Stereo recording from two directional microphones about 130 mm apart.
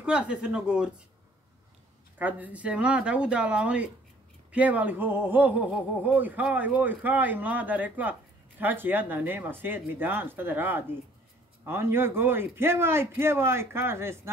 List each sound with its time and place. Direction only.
0.0 s speech: 5° right (ahead or behind)
2.1 s a man's voice: 10° right (ahead or behind)